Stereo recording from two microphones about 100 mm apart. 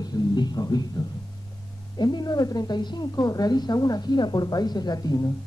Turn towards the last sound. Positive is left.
turn(degrees=40)  # may be behind; listen again after turning